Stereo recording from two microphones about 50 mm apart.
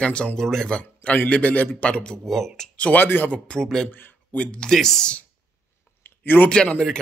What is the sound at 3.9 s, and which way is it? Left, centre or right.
Speech, left.